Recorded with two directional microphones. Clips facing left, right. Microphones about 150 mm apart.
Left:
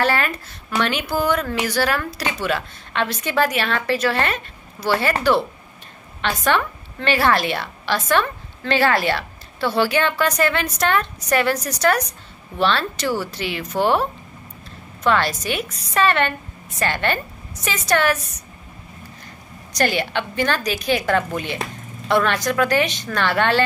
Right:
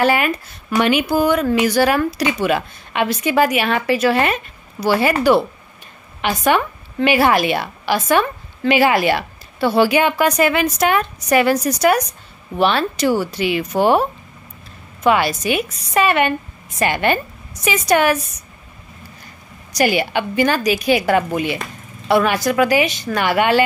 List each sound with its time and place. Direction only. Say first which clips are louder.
0.0 s a woman's voice: right 4 dB; 15° right (ahead or behind)
15.0 s a woman's voice: right 4 dB; 10° right (ahead or behind)
19.7 s a woman's voice: right 4 dB; 10° right (ahead or behind)